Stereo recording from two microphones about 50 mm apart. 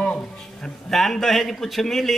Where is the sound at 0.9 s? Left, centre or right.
Centre.